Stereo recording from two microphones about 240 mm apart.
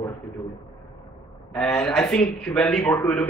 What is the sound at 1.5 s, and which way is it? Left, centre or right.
A man's voice, centre.